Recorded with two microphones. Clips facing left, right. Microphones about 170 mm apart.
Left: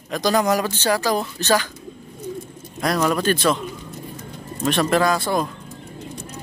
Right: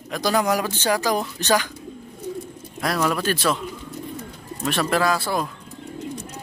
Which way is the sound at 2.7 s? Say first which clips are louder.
Left 3 dB; centre (ahead or behind).